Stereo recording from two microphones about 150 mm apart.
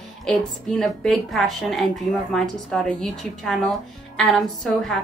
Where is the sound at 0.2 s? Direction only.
5° left (ahead or behind).